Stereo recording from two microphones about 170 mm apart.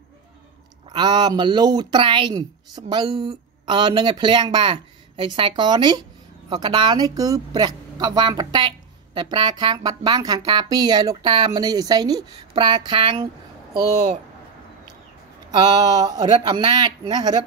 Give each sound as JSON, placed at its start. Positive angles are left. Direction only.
{"t": 0.8, "sound": "a woman's voice", "side_deg": -25}
{"t": 15.5, "sound": "a woman's voice", "side_deg": -25}